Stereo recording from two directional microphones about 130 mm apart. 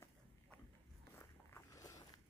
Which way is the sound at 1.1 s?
25° left (ahead or behind).